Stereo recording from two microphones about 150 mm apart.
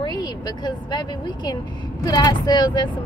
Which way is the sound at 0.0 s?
30° left (ahead or behind).